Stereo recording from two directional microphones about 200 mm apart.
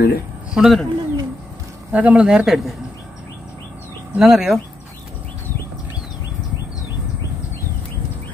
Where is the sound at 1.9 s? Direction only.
5° right (ahead or behind).